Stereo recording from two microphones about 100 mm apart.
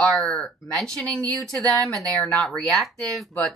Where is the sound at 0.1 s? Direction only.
5° left (ahead or behind).